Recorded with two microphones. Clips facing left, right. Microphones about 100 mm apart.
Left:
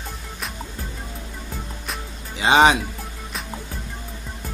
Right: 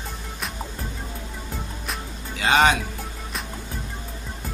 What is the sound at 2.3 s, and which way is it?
Music, 20° left (ahead or behind).